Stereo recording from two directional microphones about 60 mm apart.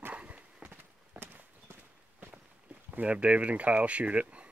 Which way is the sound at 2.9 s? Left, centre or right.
Right.